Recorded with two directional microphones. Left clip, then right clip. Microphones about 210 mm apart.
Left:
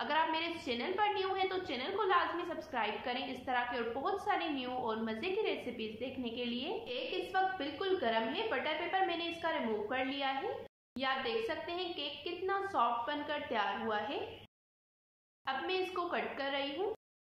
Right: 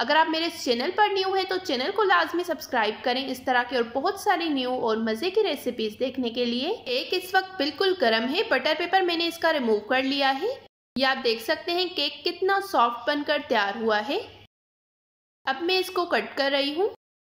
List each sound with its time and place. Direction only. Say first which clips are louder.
0.0 s a woman's voice: right 11 dB; 35° right (ahead or behind)
15.4 s a woman's voice: right 11 dB; 40° right (ahead or behind)